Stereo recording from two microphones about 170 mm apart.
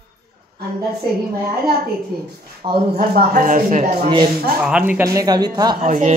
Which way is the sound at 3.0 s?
50° right (ahead or behind).